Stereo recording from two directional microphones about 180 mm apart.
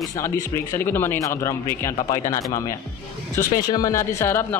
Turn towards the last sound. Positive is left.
turn(degrees=15)  # may be behind; listen again after turning